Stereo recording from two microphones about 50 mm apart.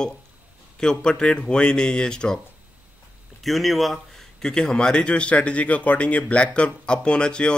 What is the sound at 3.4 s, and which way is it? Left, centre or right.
A man's voice, centre.